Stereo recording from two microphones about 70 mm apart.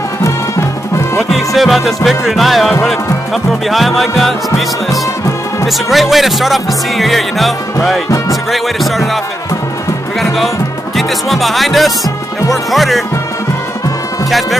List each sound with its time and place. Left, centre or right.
0.2 s music: left
1.1 s speech: centre
5.7 s speech: centre
10.2 s speech: centre